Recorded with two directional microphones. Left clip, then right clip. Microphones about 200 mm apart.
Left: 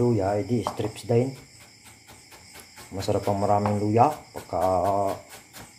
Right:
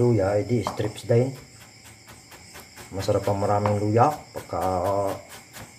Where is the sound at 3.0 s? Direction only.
20° left (ahead or behind).